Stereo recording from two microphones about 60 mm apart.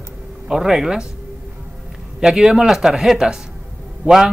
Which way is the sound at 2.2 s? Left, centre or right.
Centre.